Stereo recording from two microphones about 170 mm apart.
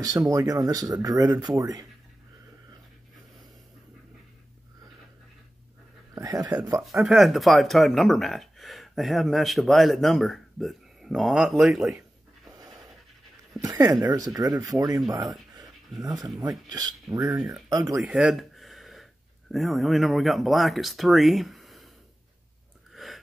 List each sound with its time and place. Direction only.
0.0 s speech: 20° right (ahead or behind)
6.1 s speech: 20° right (ahead or behind)
6.8 s speech: centre (ahead or behind)
13.6 s speech: 20° right (ahead or behind)
17.4 s speech: centre (ahead or behind)
17.6 s speech: 20° right (ahead or behind)
18.0 s a sound: 5° right (ahead or behind)
19.5 s speech: centre (ahead or behind)
23.0 s gasp: centre (ahead or behind)